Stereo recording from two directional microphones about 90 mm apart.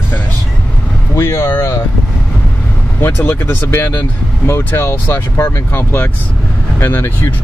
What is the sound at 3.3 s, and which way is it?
Speech, 25° left (ahead or behind).